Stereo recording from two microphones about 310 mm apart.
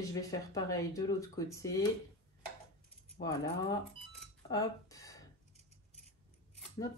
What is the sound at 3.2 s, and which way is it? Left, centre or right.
Speech, left.